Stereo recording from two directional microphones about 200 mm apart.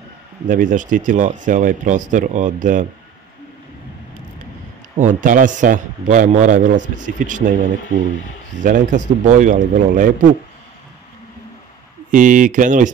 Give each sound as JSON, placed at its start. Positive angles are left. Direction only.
{"t": 0.5, "sound": "a man's voice", "side_deg": -40}
{"t": 4.9, "sound": "a man's voice", "side_deg": -40}
{"t": 12.1, "sound": "a man's voice", "side_deg": -40}